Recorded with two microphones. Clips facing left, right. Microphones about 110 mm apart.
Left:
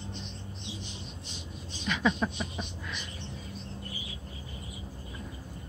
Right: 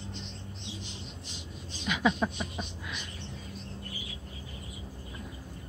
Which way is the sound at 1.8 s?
10° right (ahead or behind).